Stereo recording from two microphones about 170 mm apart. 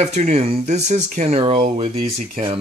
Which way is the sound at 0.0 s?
40° right (ahead or behind).